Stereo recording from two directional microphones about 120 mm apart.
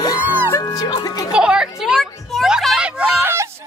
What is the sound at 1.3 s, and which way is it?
Children playing, 5° right (ahead or behind).